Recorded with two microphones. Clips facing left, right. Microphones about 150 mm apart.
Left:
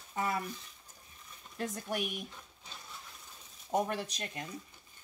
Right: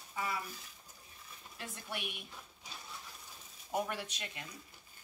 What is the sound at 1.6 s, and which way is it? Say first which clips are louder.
Speech: left 8 dB; 40° left (ahead or behind).